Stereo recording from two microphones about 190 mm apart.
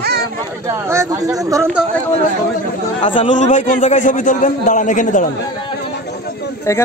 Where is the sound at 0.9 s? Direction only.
15° right (ahead or behind).